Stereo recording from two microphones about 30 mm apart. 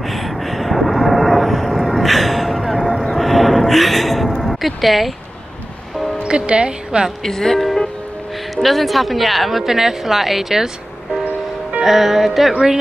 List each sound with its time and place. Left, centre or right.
0.0 s a sound: centre
4.4 s speech: centre
6.2 s speech: right
7.2 s speech: centre
8.6 s a woman's voice: centre
9.7 s a woman's voice: centre
11.8 s a woman's voice: centre